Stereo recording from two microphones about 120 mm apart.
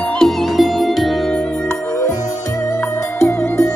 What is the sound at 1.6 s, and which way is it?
Music, 25° left (ahead or behind).